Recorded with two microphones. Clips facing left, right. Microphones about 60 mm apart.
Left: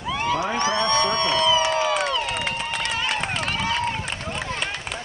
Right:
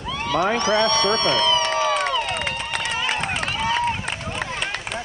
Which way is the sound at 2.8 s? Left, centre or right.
Centre.